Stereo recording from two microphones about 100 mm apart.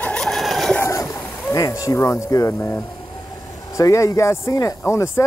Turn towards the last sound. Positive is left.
turn(degrees=25)  # may be behind; listen again after turning